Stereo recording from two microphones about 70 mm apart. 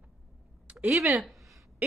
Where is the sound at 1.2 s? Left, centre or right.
Centre.